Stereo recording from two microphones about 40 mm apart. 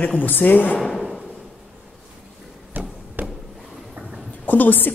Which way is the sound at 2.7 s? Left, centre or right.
Right.